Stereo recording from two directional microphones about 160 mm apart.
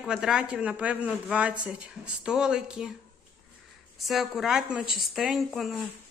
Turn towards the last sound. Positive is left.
turn(degrees=0)  # may be behind; listen again after turning